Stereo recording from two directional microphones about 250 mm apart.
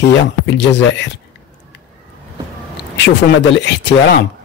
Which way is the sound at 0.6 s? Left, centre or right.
Left.